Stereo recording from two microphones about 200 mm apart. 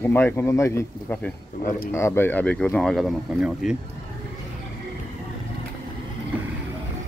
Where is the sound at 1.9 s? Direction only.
10° left (ahead or behind).